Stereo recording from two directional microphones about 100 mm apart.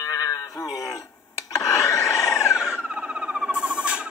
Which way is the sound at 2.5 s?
10° right (ahead or behind).